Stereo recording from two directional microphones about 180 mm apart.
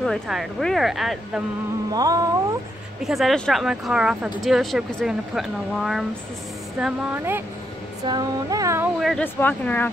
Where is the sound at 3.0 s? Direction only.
Centre (ahead or behind).